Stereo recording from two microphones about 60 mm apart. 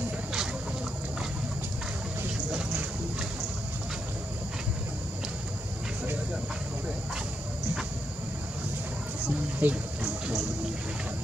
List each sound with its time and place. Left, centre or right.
9.6 s speech: right